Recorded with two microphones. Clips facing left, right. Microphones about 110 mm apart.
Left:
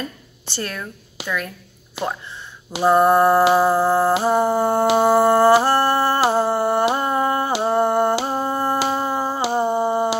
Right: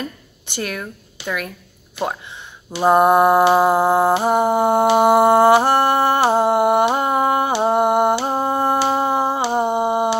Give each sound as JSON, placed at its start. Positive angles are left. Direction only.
{"t": 0.6, "sound": "mantra", "side_deg": -15}
{"t": 1.2, "sound": "speech", "side_deg": -15}
{"t": 2.8, "sound": "mantra", "side_deg": -15}
{"t": 3.4, "sound": "music", "side_deg": -20}
{"t": 7.6, "sound": "mantra", "side_deg": -15}
{"t": 8.3, "sound": "a sound", "side_deg": -20}